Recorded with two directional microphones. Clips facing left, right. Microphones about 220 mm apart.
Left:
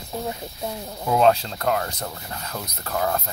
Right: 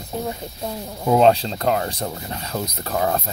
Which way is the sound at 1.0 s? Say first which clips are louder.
Right 3 dB; 25° right (ahead or behind).